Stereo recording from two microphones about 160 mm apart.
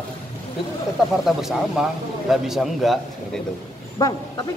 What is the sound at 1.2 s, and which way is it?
A man's voice, centre (ahead or behind).